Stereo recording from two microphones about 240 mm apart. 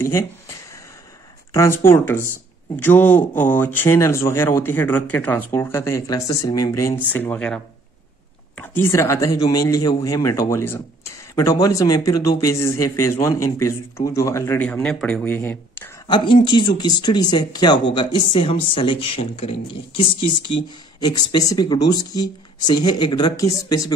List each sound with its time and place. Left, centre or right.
1.5 s speech: centre